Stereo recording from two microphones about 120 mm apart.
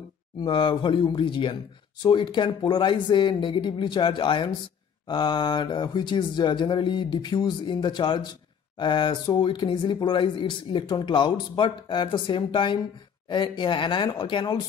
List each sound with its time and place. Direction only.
0.5 s speech: 40° left (ahead or behind)